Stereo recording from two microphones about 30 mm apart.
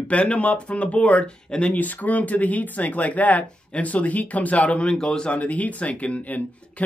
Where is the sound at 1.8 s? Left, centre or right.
Left.